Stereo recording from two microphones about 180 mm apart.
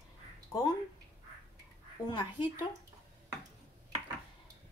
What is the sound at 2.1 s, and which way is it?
Speech, 25° left (ahead or behind).